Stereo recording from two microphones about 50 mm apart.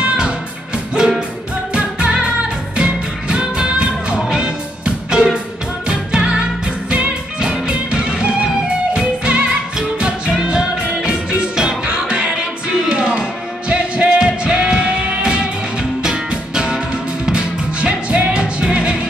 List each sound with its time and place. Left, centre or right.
0.9 s music: centre
1.7 s music: right